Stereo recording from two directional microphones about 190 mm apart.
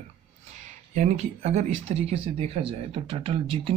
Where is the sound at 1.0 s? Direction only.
35° right (ahead or behind).